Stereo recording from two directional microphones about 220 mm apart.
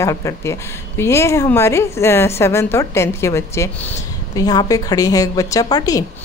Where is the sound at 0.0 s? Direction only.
15° left (ahead or behind).